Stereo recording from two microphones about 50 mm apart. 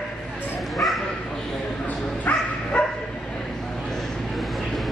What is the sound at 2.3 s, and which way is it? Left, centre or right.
Bow-wow, left.